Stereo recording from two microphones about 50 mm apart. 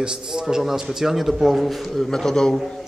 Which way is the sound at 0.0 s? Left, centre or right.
Centre.